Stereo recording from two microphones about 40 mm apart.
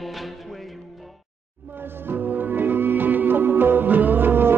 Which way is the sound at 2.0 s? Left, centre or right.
Right.